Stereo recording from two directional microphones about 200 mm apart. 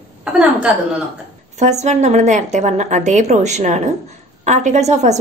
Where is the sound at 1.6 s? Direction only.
35° right (ahead or behind).